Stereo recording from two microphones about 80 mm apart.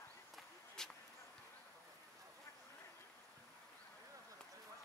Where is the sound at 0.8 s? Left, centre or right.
Centre.